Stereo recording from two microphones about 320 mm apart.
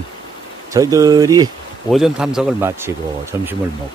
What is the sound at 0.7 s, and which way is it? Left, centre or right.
Speech, centre.